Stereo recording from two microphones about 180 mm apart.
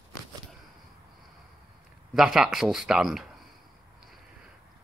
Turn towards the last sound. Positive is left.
turn(degrees=0)  # may be behind; listen again after turning